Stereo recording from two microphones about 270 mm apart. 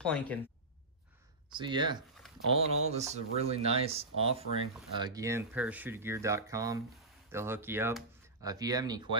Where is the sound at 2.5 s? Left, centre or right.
Right.